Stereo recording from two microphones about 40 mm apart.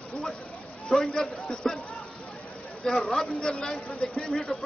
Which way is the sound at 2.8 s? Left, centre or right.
Centre.